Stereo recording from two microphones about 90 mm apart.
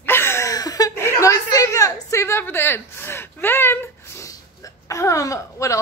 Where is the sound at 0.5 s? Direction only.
40° left (ahead or behind).